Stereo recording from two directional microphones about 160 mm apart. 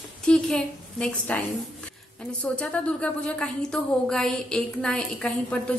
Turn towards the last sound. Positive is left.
turn(degrees=5)  # may be behind; listen again after turning